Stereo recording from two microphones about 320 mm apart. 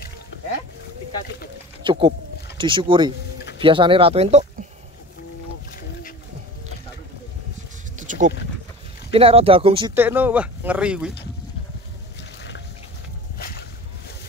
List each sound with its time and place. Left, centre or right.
1.9 s speech: centre
8.0 s a sound: right
9.1 s speech: centre